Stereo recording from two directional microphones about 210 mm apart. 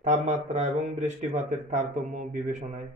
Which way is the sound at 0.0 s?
35° right (ahead or behind).